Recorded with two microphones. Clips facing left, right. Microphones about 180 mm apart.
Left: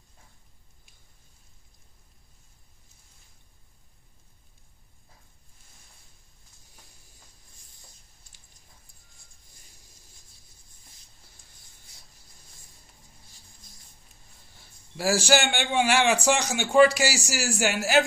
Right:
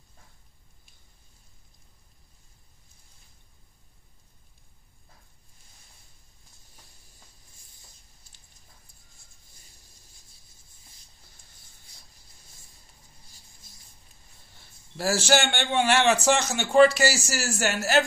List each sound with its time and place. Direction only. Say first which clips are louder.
15.0 s a man's voice: left 1 dB; 10° left (ahead or behind)